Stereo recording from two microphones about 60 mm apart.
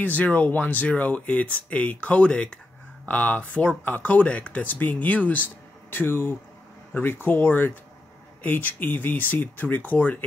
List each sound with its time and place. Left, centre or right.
0.0 s speech: left